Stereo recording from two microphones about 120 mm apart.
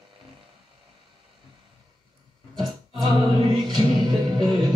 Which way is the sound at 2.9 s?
40° right (ahead or behind).